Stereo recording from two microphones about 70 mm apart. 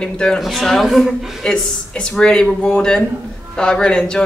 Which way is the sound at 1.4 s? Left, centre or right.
Centre.